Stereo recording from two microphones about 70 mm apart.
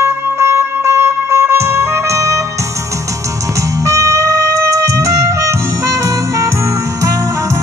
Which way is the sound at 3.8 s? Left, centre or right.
Right.